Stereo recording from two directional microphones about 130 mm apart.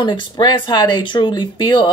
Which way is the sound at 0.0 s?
35° left (ahead or behind).